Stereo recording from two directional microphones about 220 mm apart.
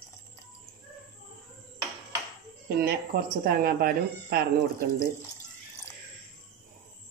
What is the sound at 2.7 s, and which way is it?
Speech, 45° right (ahead or behind).